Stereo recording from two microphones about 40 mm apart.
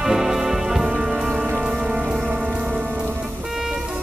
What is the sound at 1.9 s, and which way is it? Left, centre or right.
Rain on surface, right.